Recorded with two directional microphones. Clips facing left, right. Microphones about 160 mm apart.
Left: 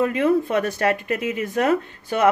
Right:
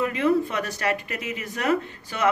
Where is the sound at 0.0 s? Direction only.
50° left (ahead or behind).